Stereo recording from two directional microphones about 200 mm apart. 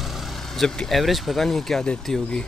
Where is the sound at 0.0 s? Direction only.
Centre (ahead or behind).